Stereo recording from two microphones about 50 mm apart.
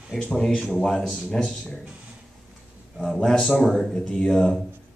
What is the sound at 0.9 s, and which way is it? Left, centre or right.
Speech, centre.